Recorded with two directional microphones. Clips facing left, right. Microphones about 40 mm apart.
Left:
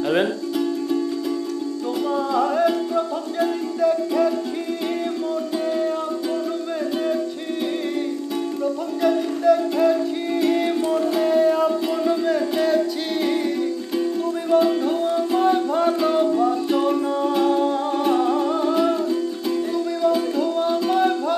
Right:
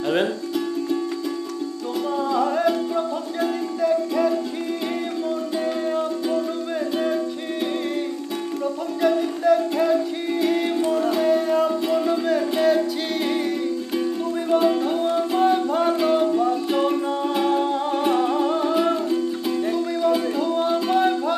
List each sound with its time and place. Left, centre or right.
0.0 s speech: centre
2.2 s music: centre
5.5 s music: centre
9.0 s music: centre
14.5 s music: centre